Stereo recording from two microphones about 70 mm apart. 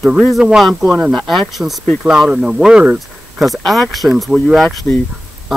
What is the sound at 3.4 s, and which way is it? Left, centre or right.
Speech, centre.